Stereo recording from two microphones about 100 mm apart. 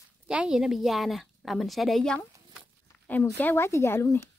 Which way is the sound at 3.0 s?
20° left (ahead or behind).